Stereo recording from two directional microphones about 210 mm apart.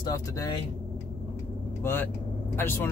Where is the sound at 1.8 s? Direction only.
10° left (ahead or behind).